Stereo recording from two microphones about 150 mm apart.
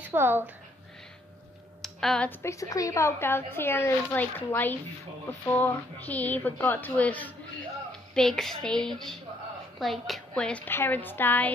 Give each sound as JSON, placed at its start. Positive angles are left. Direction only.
{"t": 0.0, "sound": "a woman's voice", "side_deg": -15}
{"t": 1.8, "sound": "a sound", "side_deg": 0}
{"t": 2.4, "sound": "a woman's voice", "side_deg": 20}